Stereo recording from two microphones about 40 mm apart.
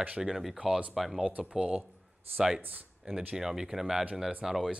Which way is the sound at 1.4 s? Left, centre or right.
Centre.